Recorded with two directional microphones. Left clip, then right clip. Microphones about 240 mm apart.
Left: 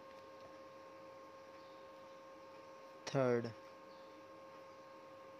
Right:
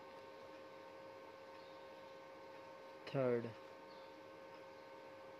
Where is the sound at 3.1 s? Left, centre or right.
Centre.